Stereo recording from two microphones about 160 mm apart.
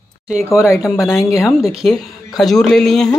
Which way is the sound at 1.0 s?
Centre (ahead or behind).